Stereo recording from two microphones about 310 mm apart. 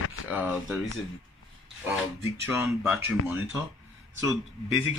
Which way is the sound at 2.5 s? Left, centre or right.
Centre.